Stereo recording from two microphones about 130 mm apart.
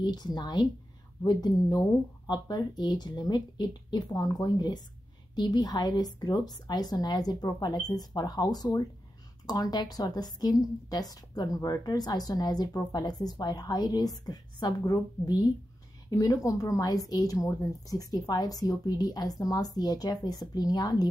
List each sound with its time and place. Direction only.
0.0 s a woman's voice: 30° left (ahead or behind)